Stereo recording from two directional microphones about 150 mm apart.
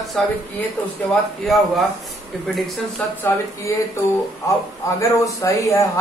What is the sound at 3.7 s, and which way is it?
Speech, 20° left (ahead or behind).